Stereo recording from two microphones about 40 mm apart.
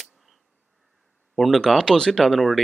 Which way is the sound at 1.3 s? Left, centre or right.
Centre.